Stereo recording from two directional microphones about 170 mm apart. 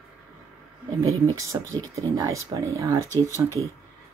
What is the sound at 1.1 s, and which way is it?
Speech, 20° right (ahead or behind).